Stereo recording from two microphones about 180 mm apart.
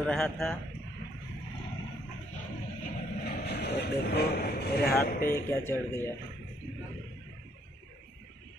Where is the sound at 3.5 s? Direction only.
65° left (ahead or behind).